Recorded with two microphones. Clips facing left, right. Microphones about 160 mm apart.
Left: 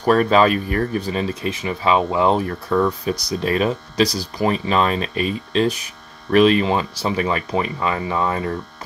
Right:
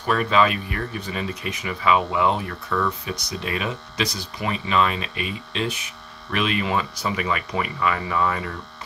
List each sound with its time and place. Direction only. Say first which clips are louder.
0.0 s speech: left 5 dB; 40° left (ahead or behind)